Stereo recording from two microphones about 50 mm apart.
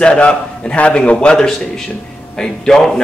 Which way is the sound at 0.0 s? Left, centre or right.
Centre.